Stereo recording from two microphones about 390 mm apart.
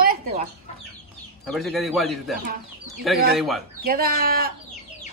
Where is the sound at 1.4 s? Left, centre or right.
Centre.